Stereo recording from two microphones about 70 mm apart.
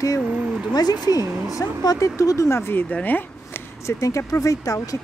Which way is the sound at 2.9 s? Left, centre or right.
Left.